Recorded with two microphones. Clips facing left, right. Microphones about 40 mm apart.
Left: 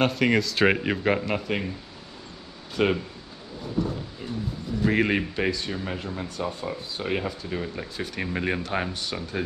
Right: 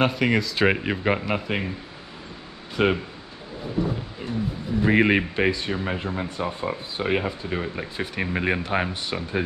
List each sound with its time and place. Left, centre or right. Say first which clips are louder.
0.0 s speech: right 1 dB; centre
2.7 s speech: right 2 dB; centre
4.8 s speech: right 4 dB; right